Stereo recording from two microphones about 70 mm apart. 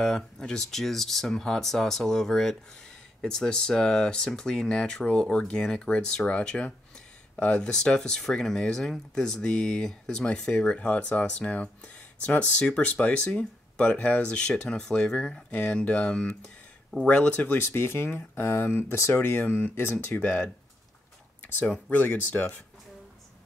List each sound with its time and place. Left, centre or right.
0.0 s speech: centre
17.4 s speech: left
20.2 s speech: centre
21.9 s speech: left